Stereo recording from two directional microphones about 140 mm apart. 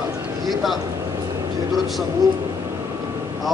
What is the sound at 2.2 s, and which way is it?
Speech, 25° right (ahead or behind).